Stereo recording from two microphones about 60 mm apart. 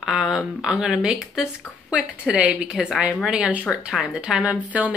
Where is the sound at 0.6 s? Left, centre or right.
Centre.